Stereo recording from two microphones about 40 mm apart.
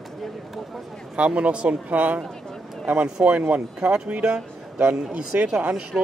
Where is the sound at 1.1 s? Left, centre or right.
Right.